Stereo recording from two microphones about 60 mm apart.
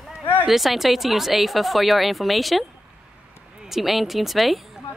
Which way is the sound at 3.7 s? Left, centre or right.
Centre.